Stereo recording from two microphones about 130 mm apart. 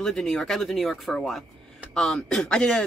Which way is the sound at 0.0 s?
5° left (ahead or behind).